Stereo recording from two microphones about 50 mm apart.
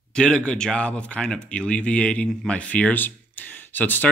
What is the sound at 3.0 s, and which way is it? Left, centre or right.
Speech, left.